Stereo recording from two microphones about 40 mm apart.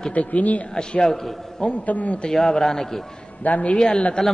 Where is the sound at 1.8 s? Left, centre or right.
Left.